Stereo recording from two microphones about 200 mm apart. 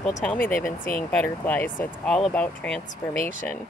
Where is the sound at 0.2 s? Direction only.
5° left (ahead or behind).